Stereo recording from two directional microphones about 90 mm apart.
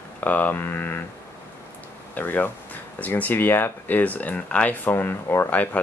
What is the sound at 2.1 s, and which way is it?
Speech, 20° left (ahead or behind).